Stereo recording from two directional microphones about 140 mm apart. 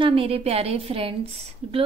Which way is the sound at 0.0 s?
40° right (ahead or behind).